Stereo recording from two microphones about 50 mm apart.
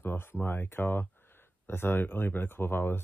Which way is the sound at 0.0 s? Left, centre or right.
Left.